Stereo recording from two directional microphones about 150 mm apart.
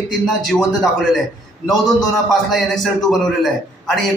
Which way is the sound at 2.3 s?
Centre (ahead or behind).